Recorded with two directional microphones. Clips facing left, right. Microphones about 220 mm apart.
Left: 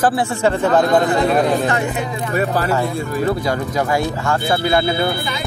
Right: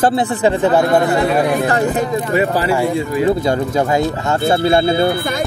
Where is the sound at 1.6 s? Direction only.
35° right (ahead or behind).